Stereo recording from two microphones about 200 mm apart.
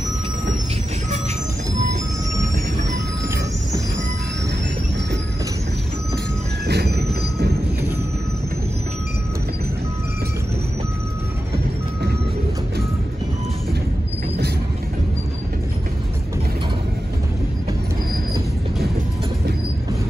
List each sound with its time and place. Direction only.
6.7 s train: 55° right (ahead or behind)